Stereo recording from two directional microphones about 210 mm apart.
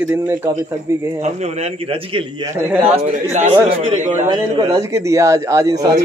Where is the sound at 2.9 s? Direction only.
35° right (ahead or behind).